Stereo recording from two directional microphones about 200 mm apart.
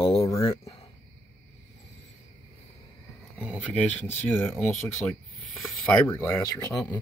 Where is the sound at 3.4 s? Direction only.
5° right (ahead or behind).